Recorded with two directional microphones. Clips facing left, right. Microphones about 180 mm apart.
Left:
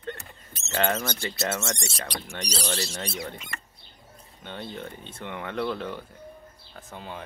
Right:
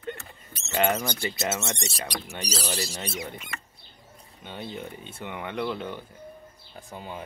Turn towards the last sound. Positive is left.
turn(degrees=-10)  # may be behind; listen again after turning